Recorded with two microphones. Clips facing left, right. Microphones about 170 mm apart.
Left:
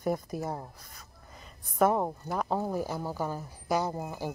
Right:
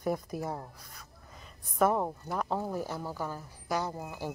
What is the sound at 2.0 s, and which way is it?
A woman's voice, 5° left (ahead or behind).